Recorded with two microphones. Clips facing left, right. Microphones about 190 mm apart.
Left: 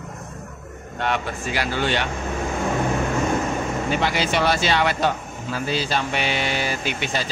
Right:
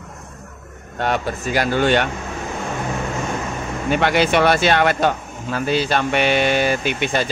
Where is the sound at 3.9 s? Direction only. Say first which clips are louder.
Right 7 dB; 60° right (ahead or behind).